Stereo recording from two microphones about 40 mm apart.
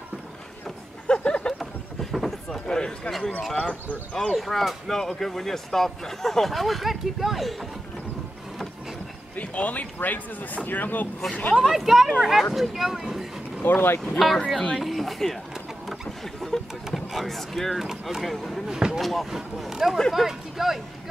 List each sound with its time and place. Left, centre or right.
1.0 s a sound: left
2.5 s speech: centre
3.1 s speech: centre
3.5 s speech: left
4.3 s speech: centre
9.4 s speech: left
11.5 s speech: centre
13.6 s speech: left
14.1 s speech: centre
16.3 s speech: centre